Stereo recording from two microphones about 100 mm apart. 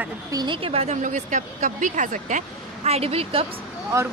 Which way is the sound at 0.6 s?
75° right (ahead or behind).